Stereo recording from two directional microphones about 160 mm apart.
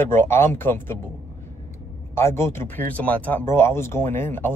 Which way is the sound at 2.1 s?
15° left (ahead or behind).